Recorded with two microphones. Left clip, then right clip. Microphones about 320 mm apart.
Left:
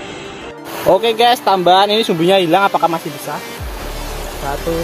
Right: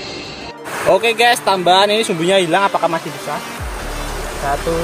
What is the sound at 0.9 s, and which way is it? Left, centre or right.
Speech, left.